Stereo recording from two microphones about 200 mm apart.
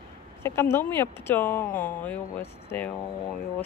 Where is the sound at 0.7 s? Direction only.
10° left (ahead or behind).